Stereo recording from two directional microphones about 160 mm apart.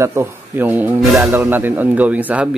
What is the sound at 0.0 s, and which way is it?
Speech, 15° right (ahead or behind).